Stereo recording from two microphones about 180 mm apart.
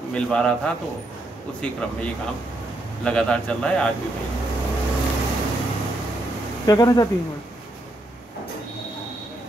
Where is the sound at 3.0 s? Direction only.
5° left (ahead or behind).